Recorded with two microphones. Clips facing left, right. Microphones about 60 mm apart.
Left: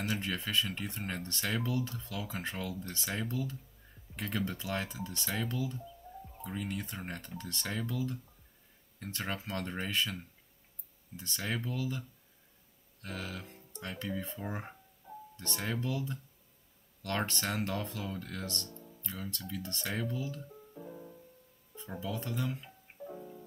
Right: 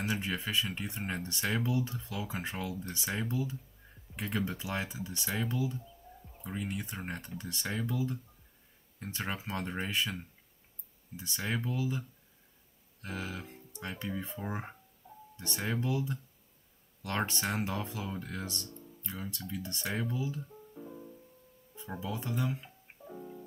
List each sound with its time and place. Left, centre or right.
0.0 s speech: centre
21.7 s speech: centre